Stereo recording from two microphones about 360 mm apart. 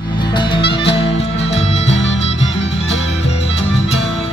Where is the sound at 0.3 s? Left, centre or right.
Centre.